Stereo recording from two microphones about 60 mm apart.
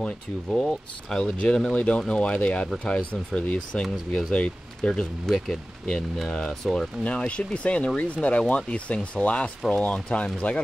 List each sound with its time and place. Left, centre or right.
0.0 s speech: centre
7.1 s speech: left